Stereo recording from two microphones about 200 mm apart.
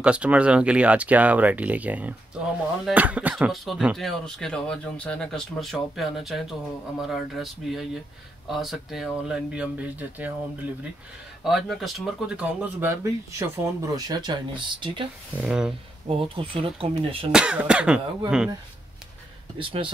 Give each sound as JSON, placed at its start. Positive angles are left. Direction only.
{"t": 0.0, "sound": "speech", "side_deg": -5}
{"t": 11.4, "sound": "speech", "side_deg": 0}
{"t": 15.3, "sound": "speech", "side_deg": -5}
{"t": 16.1, "sound": "speech", "side_deg": -25}
{"t": 17.3, "sound": "speech", "side_deg": -5}
{"t": 19.6, "sound": "speech", "side_deg": -25}